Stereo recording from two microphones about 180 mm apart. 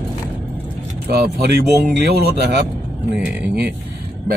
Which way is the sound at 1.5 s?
65° right (ahead or behind).